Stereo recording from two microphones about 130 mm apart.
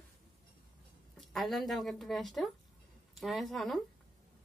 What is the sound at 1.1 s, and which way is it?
A woman's voice, centre (ahead or behind).